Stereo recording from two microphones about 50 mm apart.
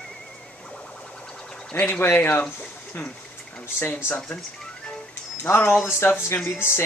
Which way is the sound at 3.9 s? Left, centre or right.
Left.